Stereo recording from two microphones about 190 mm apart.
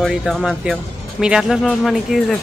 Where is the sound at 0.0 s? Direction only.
Centre (ahead or behind).